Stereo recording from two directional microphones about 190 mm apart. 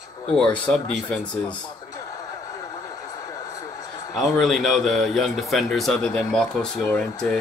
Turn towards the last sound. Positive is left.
turn(degrees=5)  # may be behind; listen again after turning